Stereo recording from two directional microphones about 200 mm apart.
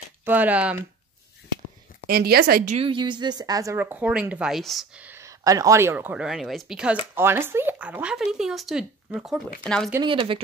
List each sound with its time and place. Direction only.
0.2 s a woman's voice: 10° right (ahead or behind)
2.0 s speech: 50° right (ahead or behind)
2.7 s a woman's voice: 25° right (ahead or behind); by 9.8 s 5° left (ahead or behind)
10.0 s speech: 25° right (ahead or behind)